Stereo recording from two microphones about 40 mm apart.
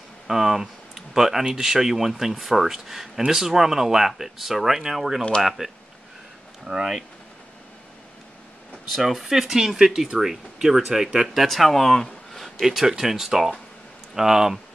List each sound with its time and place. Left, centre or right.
0.3 s speech: centre
9.0 s speech: centre
11.2 s speech: centre
12.6 s speech: centre